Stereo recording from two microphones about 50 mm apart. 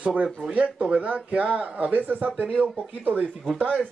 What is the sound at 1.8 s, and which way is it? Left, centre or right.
Speech, right.